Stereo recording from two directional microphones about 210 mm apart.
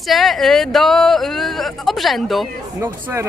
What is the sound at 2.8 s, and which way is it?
Speech, 10° right (ahead or behind).